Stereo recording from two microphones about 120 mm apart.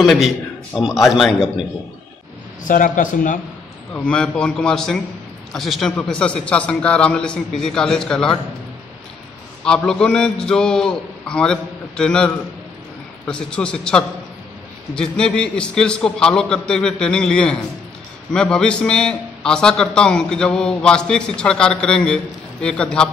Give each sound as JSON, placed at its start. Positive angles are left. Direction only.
{"t": 0.0, "sound": "a man's voice", "side_deg": 0}
{"t": 2.6, "sound": "a man's voice", "side_deg": 90}
{"t": 3.9, "sound": "a man's voice", "side_deg": 10}
{"t": 9.6, "sound": "a man's voice", "side_deg": 5}
{"t": 13.3, "sound": "a man's voice", "side_deg": 10}